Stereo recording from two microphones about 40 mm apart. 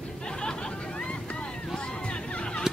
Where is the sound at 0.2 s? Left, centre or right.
Left.